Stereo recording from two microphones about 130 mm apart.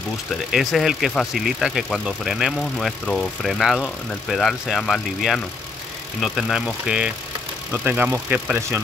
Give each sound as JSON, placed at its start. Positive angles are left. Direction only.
{"t": 0.5, "sound": "speech", "side_deg": 0}